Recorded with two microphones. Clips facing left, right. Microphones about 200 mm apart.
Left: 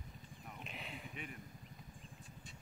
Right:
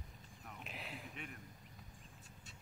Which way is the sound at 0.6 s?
Centre (ahead or behind).